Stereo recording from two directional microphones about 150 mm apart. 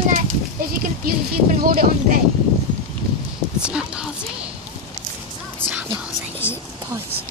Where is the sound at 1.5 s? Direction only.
80° right.